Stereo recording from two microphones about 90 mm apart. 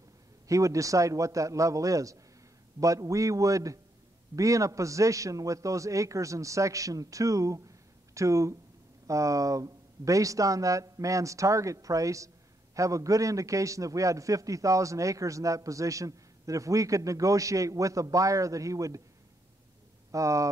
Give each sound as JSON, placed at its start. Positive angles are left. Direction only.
{"t": 0.5, "sound": "a man's voice", "side_deg": -35}
{"t": 20.1, "sound": "speech", "side_deg": -35}